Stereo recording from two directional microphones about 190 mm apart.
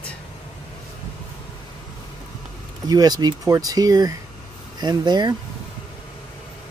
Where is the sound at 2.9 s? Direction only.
20° right (ahead or behind).